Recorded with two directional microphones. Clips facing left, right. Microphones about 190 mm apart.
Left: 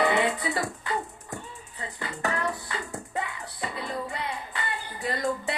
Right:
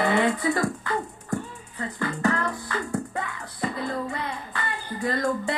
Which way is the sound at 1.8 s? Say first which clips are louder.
Right 7 dB; 20° left (ahead or behind).